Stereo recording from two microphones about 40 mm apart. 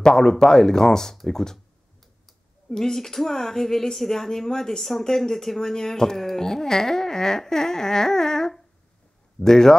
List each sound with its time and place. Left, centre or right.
0.0 s speech: centre
2.7 s speech: centre